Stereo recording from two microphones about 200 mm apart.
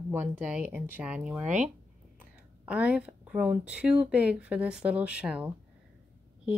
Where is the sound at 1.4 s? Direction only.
35° right (ahead or behind).